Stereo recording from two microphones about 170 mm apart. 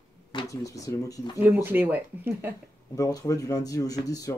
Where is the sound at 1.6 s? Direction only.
10° right (ahead or behind).